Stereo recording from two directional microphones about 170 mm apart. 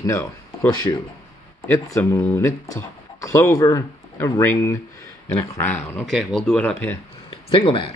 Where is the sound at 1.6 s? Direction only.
20° left (ahead or behind).